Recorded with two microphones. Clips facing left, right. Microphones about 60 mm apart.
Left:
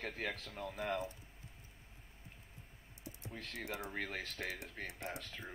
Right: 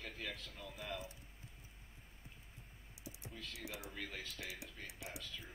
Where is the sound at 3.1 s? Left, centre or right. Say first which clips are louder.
Left 3 dB; left.